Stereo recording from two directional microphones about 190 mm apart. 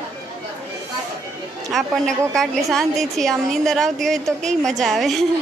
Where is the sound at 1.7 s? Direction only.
Centre (ahead or behind).